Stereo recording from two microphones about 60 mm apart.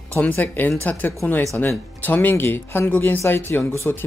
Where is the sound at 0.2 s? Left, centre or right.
Left.